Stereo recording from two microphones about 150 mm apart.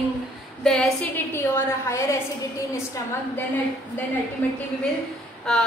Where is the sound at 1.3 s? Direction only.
15° left (ahead or behind).